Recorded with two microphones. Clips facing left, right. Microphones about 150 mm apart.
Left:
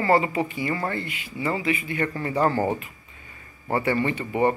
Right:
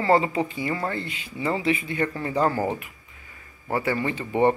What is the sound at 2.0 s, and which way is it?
A man's voice, 10° right (ahead or behind).